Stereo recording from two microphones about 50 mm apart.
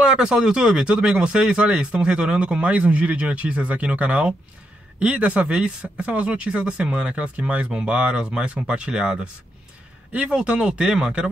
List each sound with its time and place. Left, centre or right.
0.0 s speech: centre
10.3 s speech: centre